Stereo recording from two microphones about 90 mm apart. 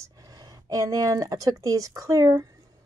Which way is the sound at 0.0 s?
40° right (ahead or behind).